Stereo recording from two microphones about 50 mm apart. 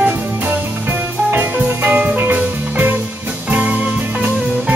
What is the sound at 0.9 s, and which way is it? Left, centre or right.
Music, right.